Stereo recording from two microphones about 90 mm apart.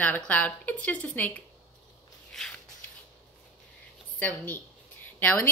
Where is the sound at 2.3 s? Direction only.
5° left (ahead or behind).